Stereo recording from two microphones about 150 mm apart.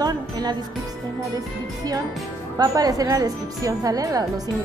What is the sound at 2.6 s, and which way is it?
A woman's voice, 25° right (ahead or behind).